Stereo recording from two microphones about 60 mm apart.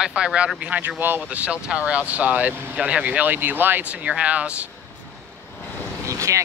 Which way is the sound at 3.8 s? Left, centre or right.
Right.